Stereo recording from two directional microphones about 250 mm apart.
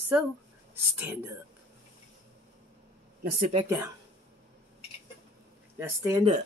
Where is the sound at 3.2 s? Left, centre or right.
Right.